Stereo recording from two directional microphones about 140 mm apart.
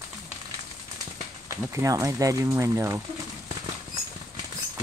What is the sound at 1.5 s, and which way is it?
Speech, 20° right (ahead or behind).